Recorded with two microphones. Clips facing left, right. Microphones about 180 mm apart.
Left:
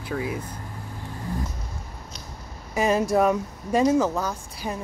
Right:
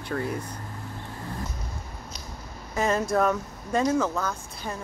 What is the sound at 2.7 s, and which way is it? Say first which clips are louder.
Speech: left 3 dB; 15° left (ahead or behind).